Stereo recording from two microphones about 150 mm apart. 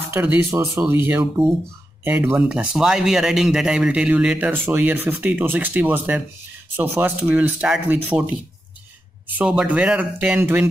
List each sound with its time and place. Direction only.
0.1 s a man's voice: 15° right (ahead or behind)
9.4 s a man's voice: 10° right (ahead or behind)